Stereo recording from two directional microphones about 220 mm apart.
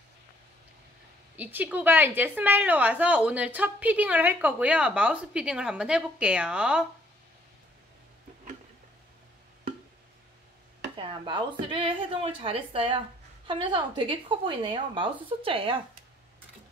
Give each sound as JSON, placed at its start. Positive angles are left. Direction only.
{"t": 1.3, "sound": "a woman's voice", "side_deg": -5}
{"t": 11.0, "sound": "a woman's voice", "side_deg": -20}